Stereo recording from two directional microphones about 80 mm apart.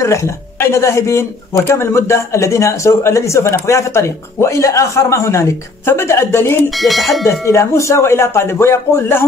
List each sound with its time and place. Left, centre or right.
0.0 s speech: left
6.7 s speech: centre
7.2 s speech: left